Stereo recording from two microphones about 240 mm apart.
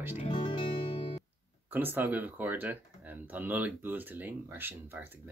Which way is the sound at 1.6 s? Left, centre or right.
Centre.